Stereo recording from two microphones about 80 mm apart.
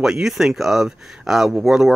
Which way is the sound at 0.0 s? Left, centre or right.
Centre.